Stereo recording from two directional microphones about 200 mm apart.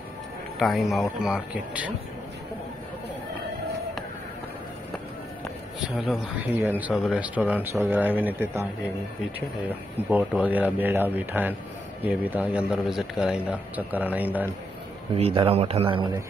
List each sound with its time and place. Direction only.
0.6 s speech: centre (ahead or behind)
6.0 s speech: 10° right (ahead or behind)
10.0 s speech: 5° right (ahead or behind)
15.1 s speech: 30° right (ahead or behind)